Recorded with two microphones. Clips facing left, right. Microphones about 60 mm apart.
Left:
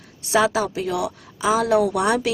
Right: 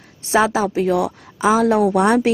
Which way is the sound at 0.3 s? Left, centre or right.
Right.